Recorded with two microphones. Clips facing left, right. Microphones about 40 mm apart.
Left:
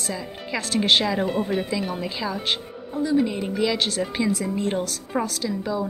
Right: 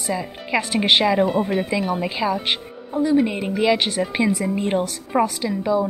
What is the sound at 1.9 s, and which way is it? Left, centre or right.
A woman's voice, right.